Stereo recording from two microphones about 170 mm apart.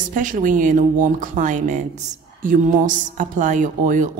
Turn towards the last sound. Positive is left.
turn(degrees=-50)  # may be behind; listen again after turning